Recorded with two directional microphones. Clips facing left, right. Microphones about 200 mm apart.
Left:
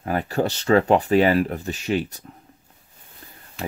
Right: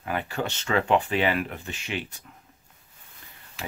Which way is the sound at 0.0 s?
40° left (ahead or behind).